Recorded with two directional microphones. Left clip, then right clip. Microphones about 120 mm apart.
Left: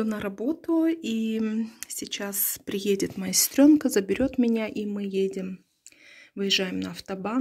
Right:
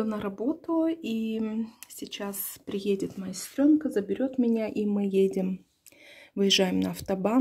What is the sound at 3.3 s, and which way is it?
Speech, 40° left (ahead or behind).